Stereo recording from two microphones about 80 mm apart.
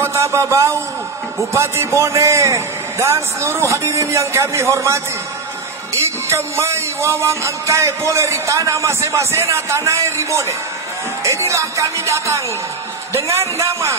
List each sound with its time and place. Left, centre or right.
0.0 s speech: right
1.5 s music: right